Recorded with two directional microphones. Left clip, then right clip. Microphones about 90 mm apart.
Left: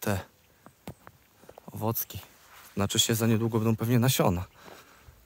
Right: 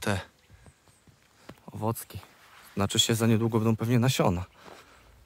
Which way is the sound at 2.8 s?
10° right (ahead or behind).